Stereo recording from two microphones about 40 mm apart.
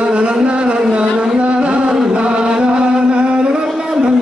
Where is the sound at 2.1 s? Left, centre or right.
Right.